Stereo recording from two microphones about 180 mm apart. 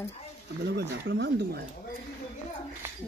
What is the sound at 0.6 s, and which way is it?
Speech, 75° right (ahead or behind).